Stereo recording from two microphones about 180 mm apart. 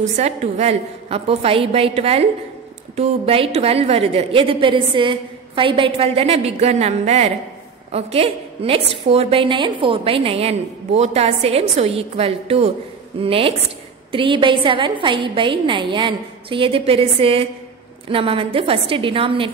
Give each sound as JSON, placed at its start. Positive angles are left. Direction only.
{"t": 0.1, "sound": "a woman's voice", "side_deg": -35}